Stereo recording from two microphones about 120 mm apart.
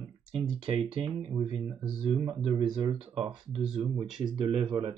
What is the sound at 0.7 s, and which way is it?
Speech, 55° right (ahead or behind).